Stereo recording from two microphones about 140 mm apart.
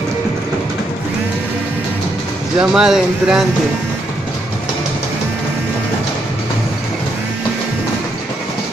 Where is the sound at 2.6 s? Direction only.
5° right (ahead or behind).